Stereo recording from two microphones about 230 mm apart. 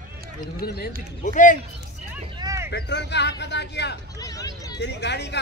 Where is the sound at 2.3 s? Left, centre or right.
Centre.